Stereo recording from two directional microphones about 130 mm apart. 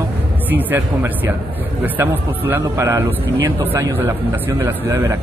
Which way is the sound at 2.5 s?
20° right (ahead or behind).